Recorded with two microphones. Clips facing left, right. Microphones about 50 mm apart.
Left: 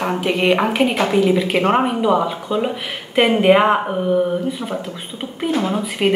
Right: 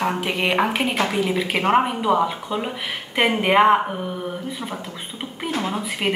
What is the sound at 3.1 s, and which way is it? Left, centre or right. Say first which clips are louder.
Speech: left 5 dB; centre.